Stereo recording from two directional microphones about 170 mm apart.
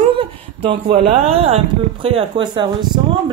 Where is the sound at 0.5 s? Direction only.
35° right (ahead or behind).